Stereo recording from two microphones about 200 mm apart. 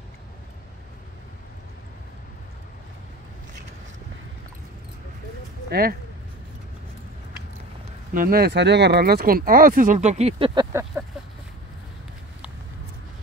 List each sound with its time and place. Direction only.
5.7 s speech: 50° right (ahead or behind)
8.1 s speech: 45° right (ahead or behind); by 11.1 s 15° right (ahead or behind)